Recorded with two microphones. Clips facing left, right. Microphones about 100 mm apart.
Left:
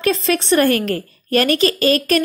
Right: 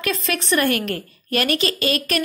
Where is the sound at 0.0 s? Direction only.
30° left (ahead or behind).